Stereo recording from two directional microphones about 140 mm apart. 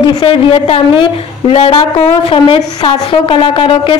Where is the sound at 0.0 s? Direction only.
35° left (ahead or behind).